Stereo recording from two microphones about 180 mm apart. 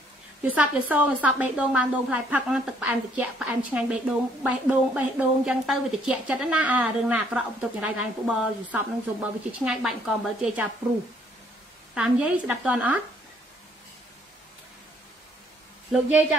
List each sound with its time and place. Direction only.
0.6 s a woman's voice: 10° right (ahead or behind)
11.9 s a woman's voice: 5° right (ahead or behind)